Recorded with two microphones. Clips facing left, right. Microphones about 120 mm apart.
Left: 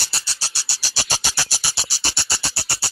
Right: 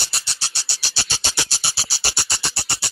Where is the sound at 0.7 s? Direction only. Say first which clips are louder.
Left 6 dB; 45° left (ahead or behind).